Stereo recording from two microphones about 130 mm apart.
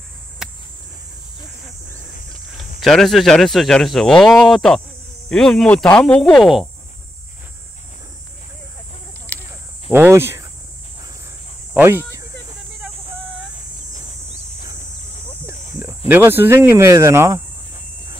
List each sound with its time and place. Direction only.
0.4 s cricket: 5° right (ahead or behind)
2.8 s speech: centre (ahead or behind)
9.8 s speech: 15° right (ahead or behind)
11.7 s speech: 15° right (ahead or behind)
16.1 s speech: 15° right (ahead or behind)